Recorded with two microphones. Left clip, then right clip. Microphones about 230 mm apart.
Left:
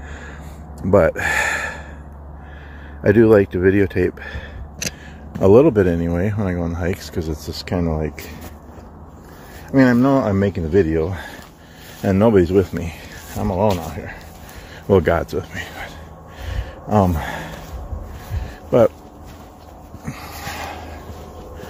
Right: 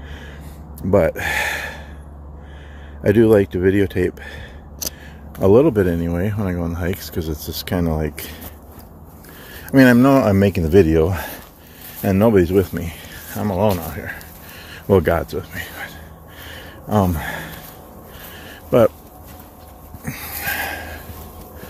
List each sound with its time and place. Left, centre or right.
0.7 s a sound: centre
3.0 s speech: centre
9.7 s speech: right
12.0 s speech: centre
13.7 s speech: centre
15.2 s speech: centre
16.4 s a sound: centre
20.1 s dog: centre